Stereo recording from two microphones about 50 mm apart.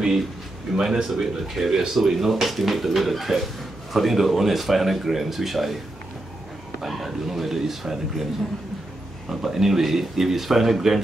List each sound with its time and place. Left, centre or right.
0.7 s speech: centre
1.1 s speech: centre
6.8 s speech: centre
9.3 s speech: centre